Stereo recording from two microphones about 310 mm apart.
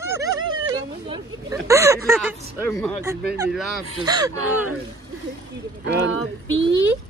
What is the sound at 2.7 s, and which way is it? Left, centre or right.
Speech, centre.